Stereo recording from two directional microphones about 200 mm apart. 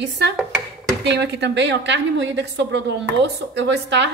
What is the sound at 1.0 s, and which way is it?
A woman's voice, 60° right (ahead or behind).